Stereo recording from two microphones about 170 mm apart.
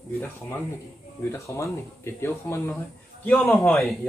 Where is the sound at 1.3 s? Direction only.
15° left (ahead or behind).